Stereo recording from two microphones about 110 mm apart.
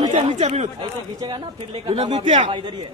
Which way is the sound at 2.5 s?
45° right (ahead or behind).